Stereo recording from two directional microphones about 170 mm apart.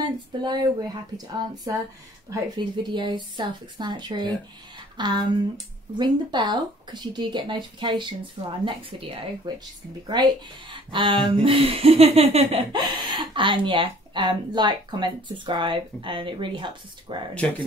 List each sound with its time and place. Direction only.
0.4 s speech: 25° right (ahead or behind)